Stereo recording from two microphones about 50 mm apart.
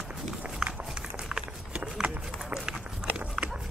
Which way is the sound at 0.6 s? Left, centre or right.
Centre.